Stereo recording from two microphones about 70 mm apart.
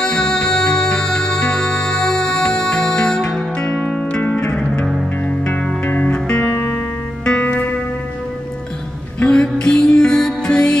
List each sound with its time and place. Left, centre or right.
0.0 s music: centre
6.5 s music: left
9.2 s music: centre